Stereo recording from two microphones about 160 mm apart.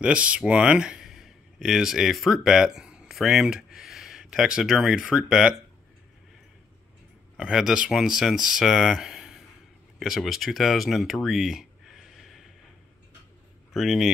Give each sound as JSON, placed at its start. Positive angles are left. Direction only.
{"t": 0.0, "sound": "speech", "side_deg": -5}
{"t": 7.3, "sound": "speech", "side_deg": -5}
{"t": 13.7, "sound": "speech", "side_deg": 0}